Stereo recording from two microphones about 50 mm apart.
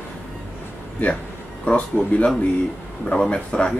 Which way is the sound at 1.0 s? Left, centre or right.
Left.